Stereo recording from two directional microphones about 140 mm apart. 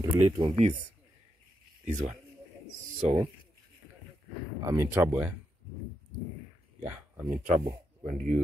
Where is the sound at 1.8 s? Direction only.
55° right (ahead or behind).